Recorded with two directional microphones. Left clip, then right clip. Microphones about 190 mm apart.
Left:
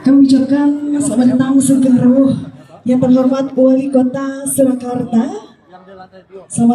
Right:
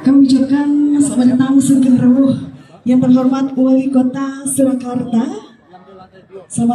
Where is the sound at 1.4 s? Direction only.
60° left (ahead or behind).